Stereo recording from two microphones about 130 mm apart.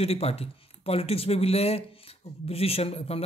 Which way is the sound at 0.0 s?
50° left (ahead or behind).